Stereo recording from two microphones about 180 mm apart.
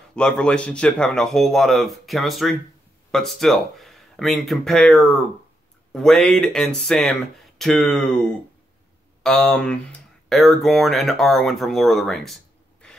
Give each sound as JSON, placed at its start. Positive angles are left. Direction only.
{"t": 0.1, "sound": "a man's voice", "side_deg": 5}
{"t": 9.2, "sound": "a man's voice", "side_deg": 0}